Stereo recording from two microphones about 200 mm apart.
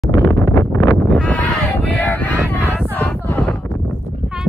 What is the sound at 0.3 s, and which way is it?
Wind noise, 15° left (ahead or behind).